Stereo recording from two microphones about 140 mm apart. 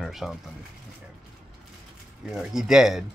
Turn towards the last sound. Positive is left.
turn(degrees=-5)  # may be behind; listen again after turning